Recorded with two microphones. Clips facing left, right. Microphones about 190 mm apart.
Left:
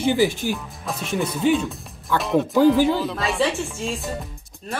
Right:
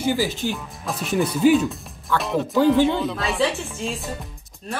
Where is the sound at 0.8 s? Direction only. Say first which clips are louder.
Right 2 dB; centre (ahead or behind).